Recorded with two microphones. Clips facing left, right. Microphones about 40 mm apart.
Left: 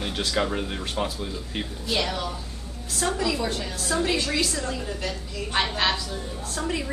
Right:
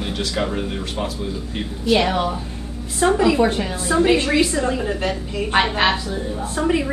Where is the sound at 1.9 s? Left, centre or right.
Right.